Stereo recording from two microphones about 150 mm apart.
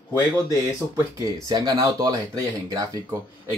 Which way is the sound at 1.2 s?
25° right (ahead or behind).